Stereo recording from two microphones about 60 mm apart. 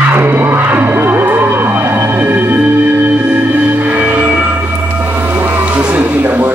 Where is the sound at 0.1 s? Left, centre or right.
Right.